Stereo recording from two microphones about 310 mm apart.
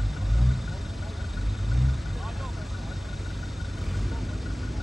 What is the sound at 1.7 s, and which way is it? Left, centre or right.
Vehicle, centre.